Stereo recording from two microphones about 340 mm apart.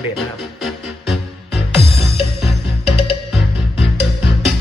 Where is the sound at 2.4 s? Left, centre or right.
Centre.